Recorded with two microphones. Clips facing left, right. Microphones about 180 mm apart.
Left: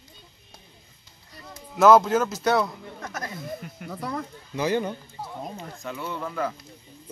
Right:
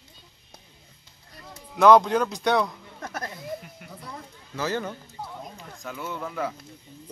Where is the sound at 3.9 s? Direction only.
80° left.